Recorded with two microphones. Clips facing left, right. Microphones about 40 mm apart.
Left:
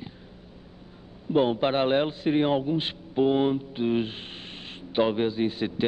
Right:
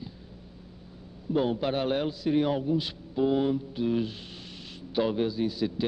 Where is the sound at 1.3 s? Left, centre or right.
Left.